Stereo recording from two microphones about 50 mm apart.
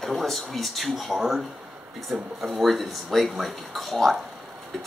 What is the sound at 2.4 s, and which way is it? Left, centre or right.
Speech, centre.